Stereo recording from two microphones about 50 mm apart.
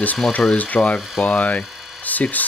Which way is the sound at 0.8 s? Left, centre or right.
Left.